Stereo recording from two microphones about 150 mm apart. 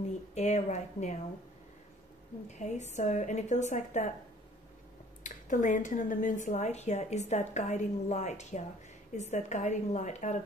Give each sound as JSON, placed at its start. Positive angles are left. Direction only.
{"t": 0.3, "sound": "a woman's voice", "side_deg": 50}
{"t": 2.4, "sound": "a woman's voice", "side_deg": 50}
{"t": 5.2, "sound": "a woman's voice", "side_deg": 55}